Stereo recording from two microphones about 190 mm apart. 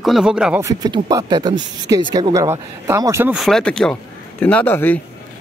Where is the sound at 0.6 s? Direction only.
20° right (ahead or behind).